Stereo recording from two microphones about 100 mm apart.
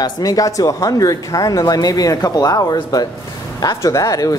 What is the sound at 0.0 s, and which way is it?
Speech, 40° left (ahead or behind).